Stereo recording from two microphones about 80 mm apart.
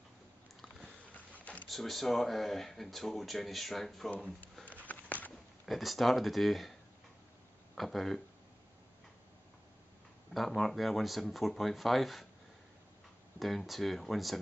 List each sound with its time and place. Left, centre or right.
1.1 s a sound: centre
1.7 s speech: centre
4.8 s a sound: left
5.7 s speech: centre
7.7 s speech: centre
10.3 s speech: centre
13.4 s speech: centre